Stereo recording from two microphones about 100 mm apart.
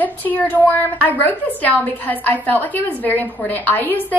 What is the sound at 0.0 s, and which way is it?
A woman's voice, 15° left (ahead or behind).